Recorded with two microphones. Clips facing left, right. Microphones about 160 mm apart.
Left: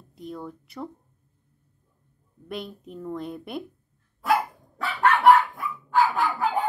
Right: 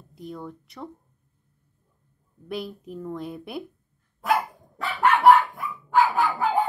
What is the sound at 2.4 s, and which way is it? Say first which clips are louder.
A woman's voice: right 2 dB; centre (ahead or behind).